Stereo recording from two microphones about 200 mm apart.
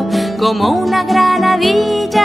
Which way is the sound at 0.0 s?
Centre (ahead or behind).